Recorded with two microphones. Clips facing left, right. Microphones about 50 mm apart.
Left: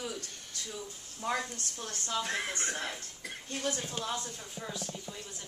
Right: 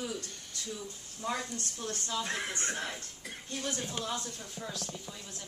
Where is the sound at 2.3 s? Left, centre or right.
Right.